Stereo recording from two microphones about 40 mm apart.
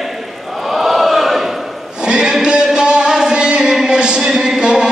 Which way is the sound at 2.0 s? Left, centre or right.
Right.